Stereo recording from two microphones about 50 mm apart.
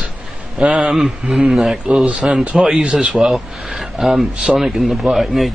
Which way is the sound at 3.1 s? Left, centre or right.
Centre.